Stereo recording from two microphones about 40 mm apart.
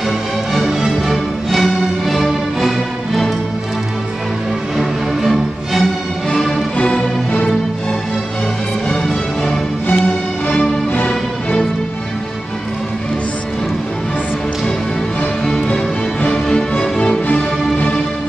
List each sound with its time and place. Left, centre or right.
0.5 s music: centre
4.7 s music: centre
15.7 s music: left
16.4 s music: left
17.3 s music: left